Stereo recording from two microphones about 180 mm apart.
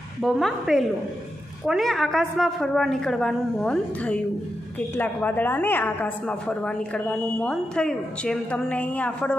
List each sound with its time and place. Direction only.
0.2 s a woman's voice: centre (ahead or behind)